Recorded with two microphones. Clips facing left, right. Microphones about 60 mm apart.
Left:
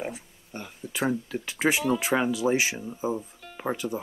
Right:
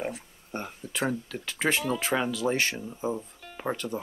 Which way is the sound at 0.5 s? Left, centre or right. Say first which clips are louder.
Right 4 dB; right.